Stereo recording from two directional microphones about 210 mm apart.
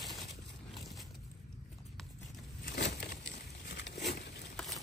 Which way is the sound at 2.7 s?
55° left (ahead or behind).